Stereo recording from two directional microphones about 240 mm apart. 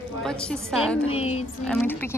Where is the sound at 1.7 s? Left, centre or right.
Centre.